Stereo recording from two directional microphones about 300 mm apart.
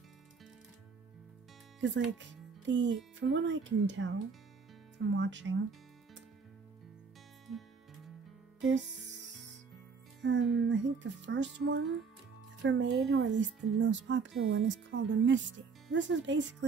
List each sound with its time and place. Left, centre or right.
1.8 s speech: right
5.1 s speech: right
8.5 s music: right
10.2 s speech: right